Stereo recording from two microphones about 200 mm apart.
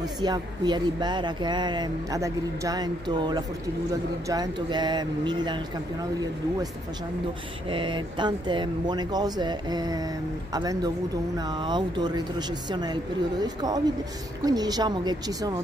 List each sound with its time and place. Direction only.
0.0 s speech: 20° right (ahead or behind)
7.7 s speech: 25° right (ahead or behind)